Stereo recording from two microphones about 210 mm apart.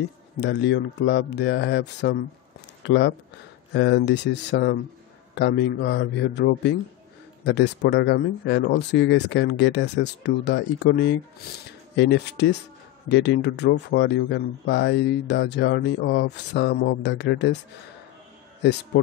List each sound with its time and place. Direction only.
0.4 s speech: 55° left (ahead or behind)